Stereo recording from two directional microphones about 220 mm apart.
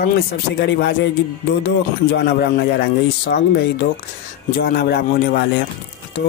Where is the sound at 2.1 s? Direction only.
50° left (ahead or behind).